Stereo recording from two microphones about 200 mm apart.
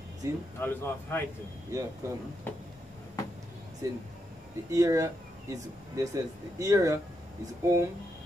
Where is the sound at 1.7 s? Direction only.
20° right (ahead or behind).